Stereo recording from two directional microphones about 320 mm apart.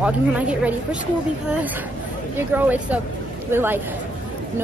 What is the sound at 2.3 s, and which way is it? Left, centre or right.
A woman's voice, centre.